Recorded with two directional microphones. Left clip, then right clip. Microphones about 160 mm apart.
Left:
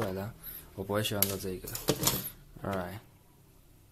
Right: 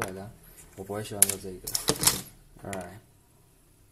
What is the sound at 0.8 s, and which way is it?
Speech, 20° left (ahead or behind).